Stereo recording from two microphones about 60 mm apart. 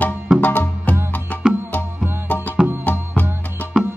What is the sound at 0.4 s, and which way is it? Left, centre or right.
Music, left.